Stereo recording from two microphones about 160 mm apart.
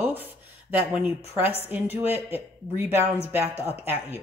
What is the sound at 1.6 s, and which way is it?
Speech, 10° right (ahead or behind).